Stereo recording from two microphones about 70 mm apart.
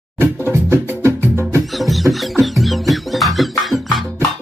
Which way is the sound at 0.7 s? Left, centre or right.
Right.